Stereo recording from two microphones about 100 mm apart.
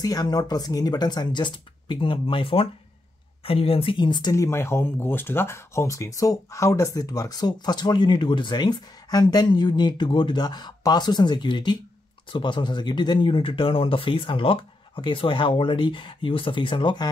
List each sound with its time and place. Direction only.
0.0 s speech: 40° left (ahead or behind)
4.3 s speech: 30° left (ahead or behind); by 17.1 s 50° left (ahead or behind)